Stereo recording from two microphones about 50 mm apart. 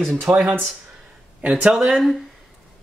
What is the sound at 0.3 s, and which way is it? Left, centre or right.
Speech, right.